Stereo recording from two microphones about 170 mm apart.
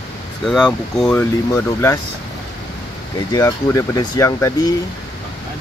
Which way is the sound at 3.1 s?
20° left (ahead or behind).